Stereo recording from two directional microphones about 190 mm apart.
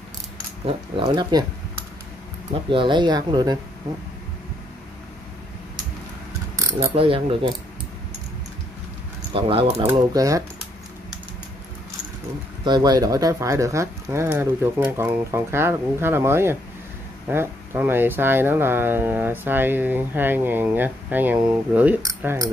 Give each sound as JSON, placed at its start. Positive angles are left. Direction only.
{"t": 0.7, "sound": "speech", "side_deg": -30}
{"t": 2.7, "sound": "speech", "side_deg": -25}
{"t": 6.5, "sound": "mechanisms", "side_deg": -15}
{"t": 7.0, "sound": "speech", "side_deg": -30}
{"t": 9.3, "sound": "speech", "side_deg": -30}
{"t": 9.8, "sound": "speech", "side_deg": -15}
{"t": 12.6, "sound": "speech", "side_deg": -20}